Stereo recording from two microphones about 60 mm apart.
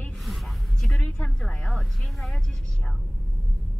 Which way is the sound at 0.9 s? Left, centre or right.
Centre.